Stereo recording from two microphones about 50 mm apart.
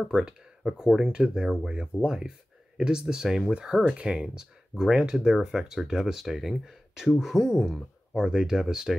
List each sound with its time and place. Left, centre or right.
0.1 s speech: centre